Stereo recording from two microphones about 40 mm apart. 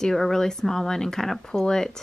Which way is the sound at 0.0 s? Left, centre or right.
Centre.